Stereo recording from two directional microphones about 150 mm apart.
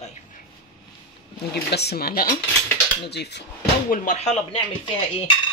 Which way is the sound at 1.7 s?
90° left.